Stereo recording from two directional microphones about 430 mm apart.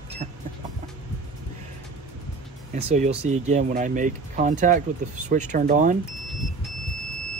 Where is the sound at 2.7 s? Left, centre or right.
Centre.